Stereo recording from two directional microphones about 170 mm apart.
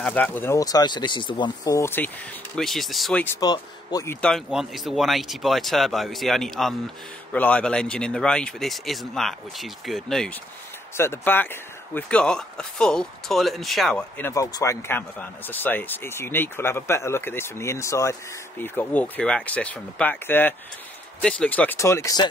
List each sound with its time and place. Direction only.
0.0 s speech: 10° left (ahead or behind)
2.5 s speech: centre (ahead or behind)
3.3 s speech: 20° left (ahead or behind)
4.5 s speech: centre (ahead or behind); by 22.3 s 20° left (ahead or behind)